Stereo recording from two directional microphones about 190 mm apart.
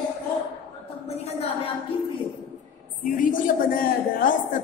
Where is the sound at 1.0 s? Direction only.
35° left (ahead or behind).